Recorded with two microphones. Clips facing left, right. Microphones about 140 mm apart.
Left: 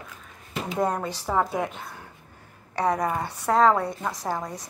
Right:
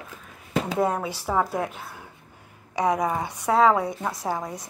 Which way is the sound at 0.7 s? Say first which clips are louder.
Left 1 dB; 5° right (ahead or behind).